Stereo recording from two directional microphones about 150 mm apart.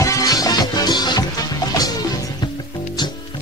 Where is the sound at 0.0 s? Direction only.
25° left (ahead or behind).